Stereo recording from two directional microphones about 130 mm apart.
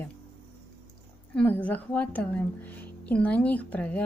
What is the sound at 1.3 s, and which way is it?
A woman's voice, 10° left (ahead or behind).